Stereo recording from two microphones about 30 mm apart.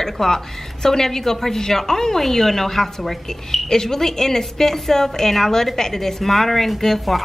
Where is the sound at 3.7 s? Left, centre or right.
Centre.